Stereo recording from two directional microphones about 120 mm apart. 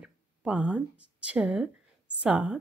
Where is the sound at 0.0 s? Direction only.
10° right (ahead or behind).